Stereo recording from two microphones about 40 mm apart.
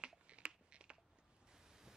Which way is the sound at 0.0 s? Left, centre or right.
Right.